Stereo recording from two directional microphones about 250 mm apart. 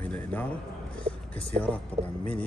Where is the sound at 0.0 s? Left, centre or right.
Centre.